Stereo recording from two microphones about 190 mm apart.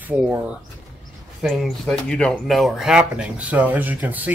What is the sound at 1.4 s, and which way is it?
Speech, centre (ahead or behind).